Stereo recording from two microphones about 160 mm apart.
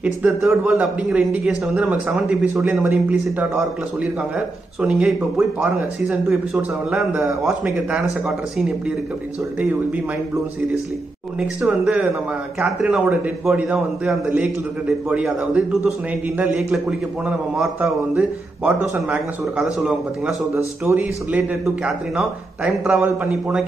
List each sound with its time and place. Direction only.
0.0 s a man's voice: 5° right (ahead or behind)
11.3 s a man's voice: 5° right (ahead or behind)
20.5 s a man's voice: 15° right (ahead or behind)